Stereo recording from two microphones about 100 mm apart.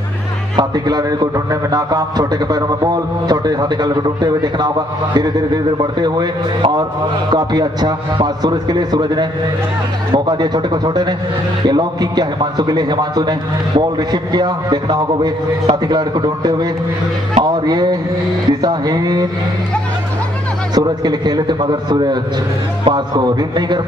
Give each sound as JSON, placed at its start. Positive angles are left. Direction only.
{"t": 0.6, "sound": "a man's voice", "side_deg": -45}
{"t": 20.7, "sound": "a man's voice", "side_deg": -45}